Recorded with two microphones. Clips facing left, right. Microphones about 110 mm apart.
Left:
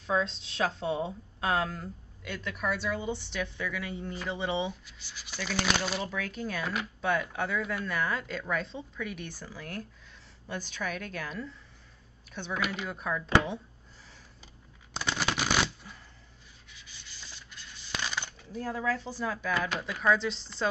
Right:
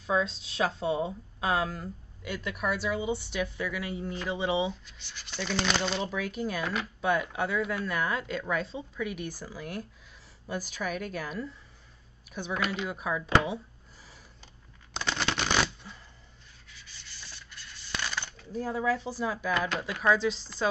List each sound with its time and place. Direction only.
0.0 s speech: 5° right (ahead or behind)
4.8 s speech: 5° left (ahead or behind)
6.0 s a woman's voice: 10° right (ahead or behind)
12.5 s speech: 10° left (ahead or behind)
12.8 s a woman's voice: 10° right (ahead or behind)
15.0 s a sound: 5° left (ahead or behind)
18.5 s a woman's voice: 10° right (ahead or behind)